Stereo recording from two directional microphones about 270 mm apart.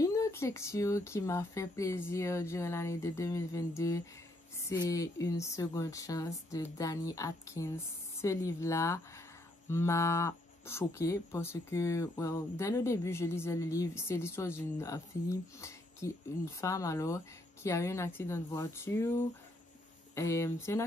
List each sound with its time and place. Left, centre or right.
0.0 s cattle: centre